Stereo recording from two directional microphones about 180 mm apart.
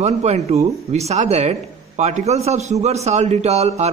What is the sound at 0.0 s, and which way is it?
Speech, 35° right (ahead or behind).